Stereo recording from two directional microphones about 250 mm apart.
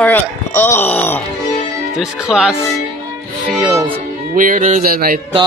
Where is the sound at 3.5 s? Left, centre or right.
Centre.